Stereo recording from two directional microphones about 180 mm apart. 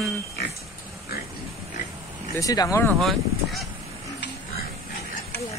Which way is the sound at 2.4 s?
20° left (ahead or behind).